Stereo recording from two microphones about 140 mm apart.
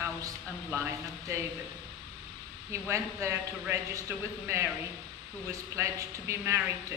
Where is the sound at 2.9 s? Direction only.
20° right (ahead or behind).